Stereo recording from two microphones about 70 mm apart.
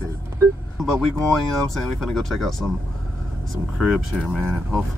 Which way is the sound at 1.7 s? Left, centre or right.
Centre.